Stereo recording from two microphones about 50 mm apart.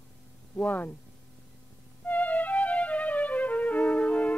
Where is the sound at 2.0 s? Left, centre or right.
Left.